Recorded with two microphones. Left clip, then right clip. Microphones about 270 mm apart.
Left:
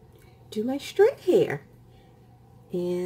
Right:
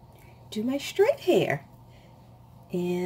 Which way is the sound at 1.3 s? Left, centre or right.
Left.